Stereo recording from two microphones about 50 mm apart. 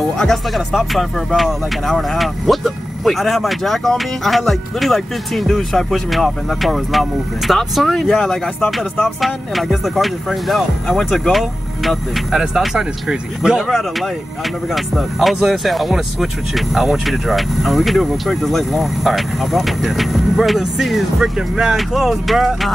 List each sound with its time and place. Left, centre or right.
0.2 s speech: centre
13.7 s speech: centre